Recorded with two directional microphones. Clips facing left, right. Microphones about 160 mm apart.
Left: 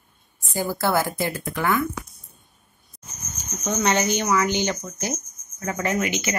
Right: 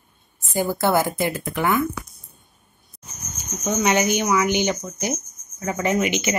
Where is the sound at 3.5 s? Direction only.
15° right (ahead or behind).